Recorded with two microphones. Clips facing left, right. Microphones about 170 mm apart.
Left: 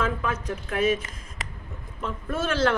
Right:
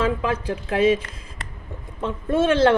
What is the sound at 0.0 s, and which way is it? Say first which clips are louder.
Speech: right 5 dB; 30° right (ahead or behind).